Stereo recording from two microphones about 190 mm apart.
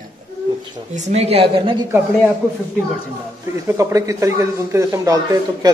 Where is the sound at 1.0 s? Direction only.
35° right (ahead or behind).